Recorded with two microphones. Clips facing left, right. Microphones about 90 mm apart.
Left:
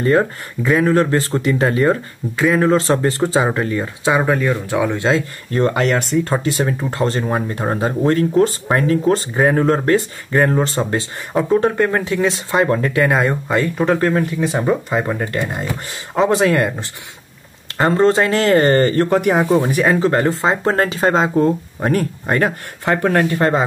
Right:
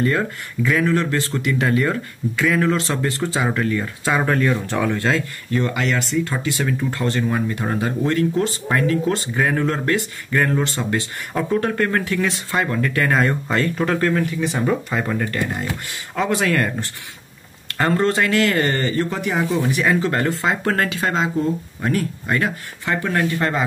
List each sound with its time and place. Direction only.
0.0 s speech: 30° left (ahead or behind)
5.5 s speech: 40° left (ahead or behind)
11.3 s speech: 20° left (ahead or behind)